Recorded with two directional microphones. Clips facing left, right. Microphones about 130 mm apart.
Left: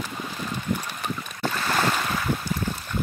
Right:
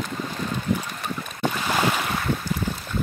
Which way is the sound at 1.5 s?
10° right (ahead or behind).